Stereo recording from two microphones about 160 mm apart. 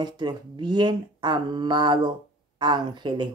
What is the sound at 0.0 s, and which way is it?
Speech, 30° right (ahead or behind).